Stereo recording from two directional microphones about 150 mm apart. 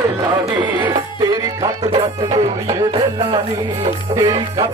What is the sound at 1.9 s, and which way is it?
Music, 35° right (ahead or behind).